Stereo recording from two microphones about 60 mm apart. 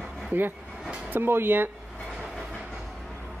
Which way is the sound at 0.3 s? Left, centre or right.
Right.